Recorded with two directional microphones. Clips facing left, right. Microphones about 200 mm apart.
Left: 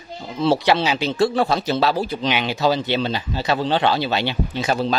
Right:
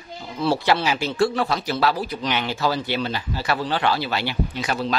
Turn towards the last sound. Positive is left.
turn(degrees=30)  # may be behind; listen again after turning